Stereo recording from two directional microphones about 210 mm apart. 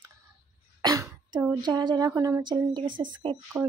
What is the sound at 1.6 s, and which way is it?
Speech, 20° right (ahead or behind).